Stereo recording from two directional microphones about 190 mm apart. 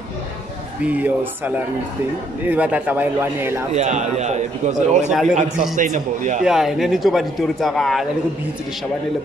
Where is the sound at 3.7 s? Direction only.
35° right (ahead or behind).